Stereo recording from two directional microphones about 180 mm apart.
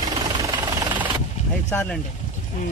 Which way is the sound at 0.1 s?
25° right (ahead or behind).